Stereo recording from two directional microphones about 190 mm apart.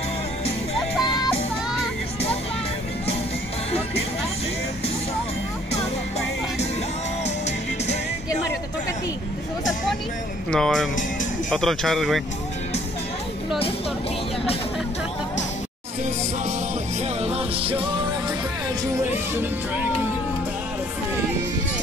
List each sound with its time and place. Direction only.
7.4 s music: 35° left (ahead or behind)
10.5 s speech: centre (ahead or behind)
17.2 s music: 30° right (ahead or behind)